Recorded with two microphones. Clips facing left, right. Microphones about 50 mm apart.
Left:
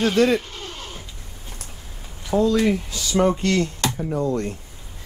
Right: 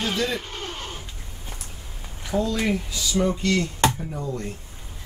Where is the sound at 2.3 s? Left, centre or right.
Left.